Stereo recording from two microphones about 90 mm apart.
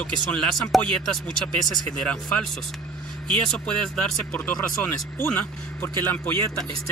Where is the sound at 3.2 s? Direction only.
10° left (ahead or behind).